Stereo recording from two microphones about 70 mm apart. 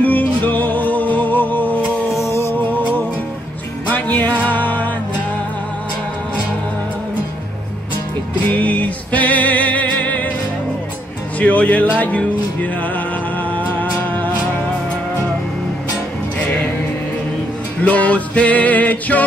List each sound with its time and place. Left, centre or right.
0.0 s music: left
2.0 s music: left
3.8 s music: left
8.5 s music: left
11.3 s music: left
16.3 s music: left
17.8 s music: centre